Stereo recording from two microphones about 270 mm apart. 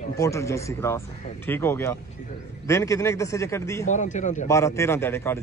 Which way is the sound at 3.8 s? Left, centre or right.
Left.